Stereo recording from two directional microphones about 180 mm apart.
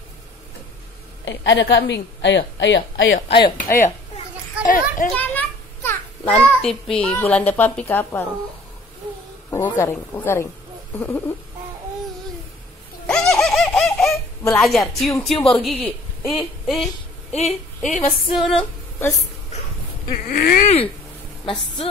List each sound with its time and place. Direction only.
1.2 s a woman's voice: 85° left
3.3 s speech: 25° left (ahead or behind)
4.6 s a sound: 45° left (ahead or behind)
5.1 s a child's voice: 10° left (ahead or behind)
9.5 s a woman's voice: 15° left (ahead or behind)
13.0 s giggle: 5° left (ahead or behind)
14.5 s music: centre (ahead or behind)
15.5 s a man's voice: 5° left (ahead or behind)
16.3 s music: centre (ahead or behind)
17.3 s speech: 35° left (ahead or behind)
17.9 s music: centre (ahead or behind)
20.1 s a sound: 55° left (ahead or behind)
20.6 s speech: 35° left (ahead or behind)